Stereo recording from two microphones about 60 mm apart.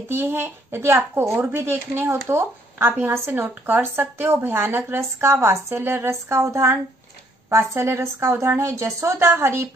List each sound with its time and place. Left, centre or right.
0.1 s a child's voice: right
6.4 s a woman's voice: right
7.4 s a child's voice: right